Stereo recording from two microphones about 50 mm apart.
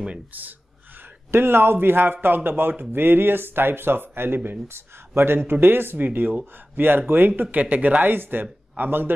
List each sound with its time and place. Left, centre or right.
0.3 s a man's voice: right
1.3 s speech: right
7.5 s a man's voice: right